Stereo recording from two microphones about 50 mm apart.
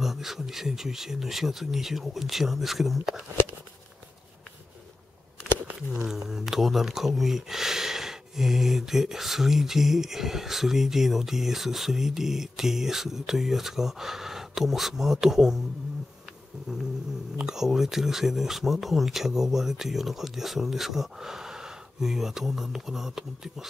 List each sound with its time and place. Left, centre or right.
0.0 s speech: centre
6.0 s speech: centre
17.4 s speech: centre